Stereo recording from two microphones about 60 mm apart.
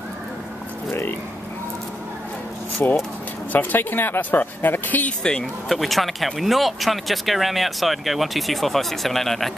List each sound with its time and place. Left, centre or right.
2.8 s speech: left
5.4 s speech: centre